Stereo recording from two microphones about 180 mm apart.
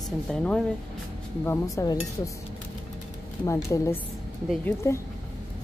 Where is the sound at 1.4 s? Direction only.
15° left (ahead or behind).